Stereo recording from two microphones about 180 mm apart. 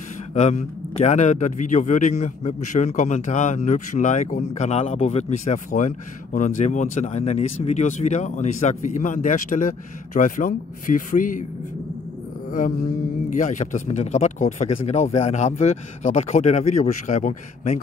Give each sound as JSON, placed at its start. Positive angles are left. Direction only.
{"t": 0.3, "sound": "a man's voice", "side_deg": 40}
{"t": 12.4, "sound": "mantra", "side_deg": 50}
{"t": 13.3, "sound": "speech", "side_deg": 45}